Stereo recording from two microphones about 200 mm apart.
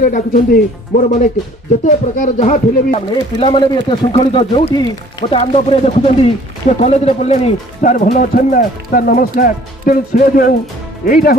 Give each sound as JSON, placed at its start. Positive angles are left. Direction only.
{"t": 0.0, "sound": "speech", "side_deg": 45}